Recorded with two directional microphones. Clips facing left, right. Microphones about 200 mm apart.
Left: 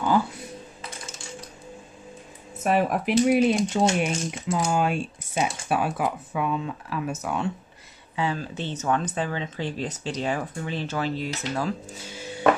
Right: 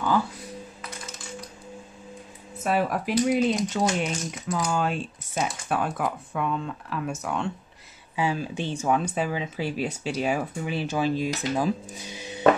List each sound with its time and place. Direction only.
0.8 s typing: 30° left (ahead or behind)
2.6 s speech: 20° left (ahead or behind)
3.8 s speech: 25° left (ahead or behind)
4.7 s speech: 10° left (ahead or behind)
8.2 s speech: 10° right (ahead or behind)